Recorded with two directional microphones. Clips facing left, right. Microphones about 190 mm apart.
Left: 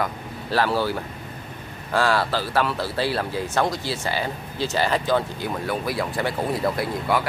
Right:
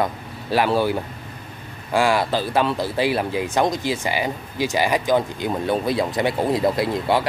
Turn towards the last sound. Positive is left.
turn(degrees=-25)  # may be behind; listen again after turning